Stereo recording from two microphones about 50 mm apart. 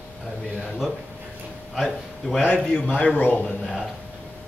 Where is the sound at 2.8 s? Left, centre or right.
Left.